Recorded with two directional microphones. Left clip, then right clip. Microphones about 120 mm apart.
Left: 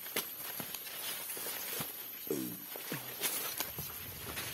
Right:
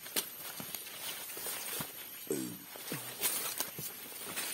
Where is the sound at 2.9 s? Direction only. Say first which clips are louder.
Right 1 dB; centre (ahead or behind).